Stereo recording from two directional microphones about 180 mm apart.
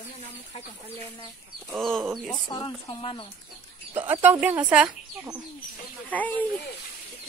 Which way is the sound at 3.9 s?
10° right (ahead or behind).